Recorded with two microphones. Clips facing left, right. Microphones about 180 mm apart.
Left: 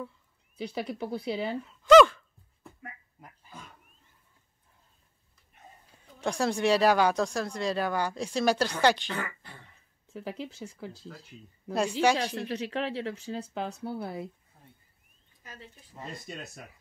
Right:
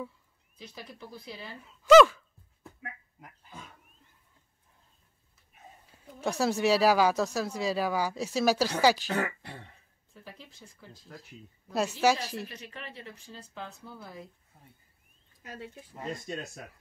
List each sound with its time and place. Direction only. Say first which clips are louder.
0.6 s speech: left 12 dB; 70° left (ahead or behind)
1.6 s gasp: even; centre (ahead or behind)
5.5 s speech: right 1 dB; 5° right (ahead or behind)
9.2 s speech: right 5 dB; 70° right (ahead or behind)
10.0 s speech: left 12 dB; 75° left (ahead or behind)
11.7 s speech: left 1 dB; 5° right (ahead or behind)
12.4 s speech: left 13 dB; 75° left (ahead or behind)
14.5 s speech: left 1 dB; 5° right (ahead or behind)
15.9 s speech: right 4 dB; centre (ahead or behind)